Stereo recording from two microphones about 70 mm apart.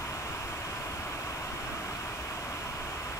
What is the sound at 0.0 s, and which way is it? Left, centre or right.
Vehicle, left.